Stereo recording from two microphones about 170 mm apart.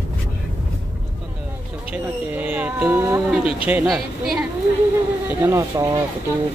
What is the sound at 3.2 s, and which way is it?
Speech, 5° right (ahead or behind).